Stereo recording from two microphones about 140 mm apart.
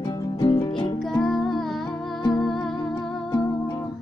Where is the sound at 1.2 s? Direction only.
Centre (ahead or behind).